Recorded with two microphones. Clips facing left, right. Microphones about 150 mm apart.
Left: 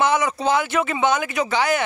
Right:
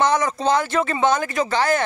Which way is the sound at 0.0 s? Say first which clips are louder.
Right 1 dB; 5° left (ahead or behind).